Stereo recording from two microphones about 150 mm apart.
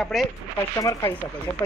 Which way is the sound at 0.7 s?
20° left (ahead or behind).